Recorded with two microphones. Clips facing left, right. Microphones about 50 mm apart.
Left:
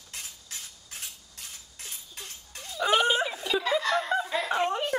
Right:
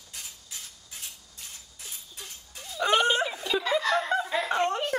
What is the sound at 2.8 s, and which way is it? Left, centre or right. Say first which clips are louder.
Snicker: even; centre.